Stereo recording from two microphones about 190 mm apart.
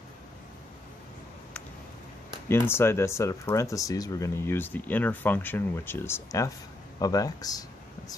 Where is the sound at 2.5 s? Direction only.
15° left (ahead or behind).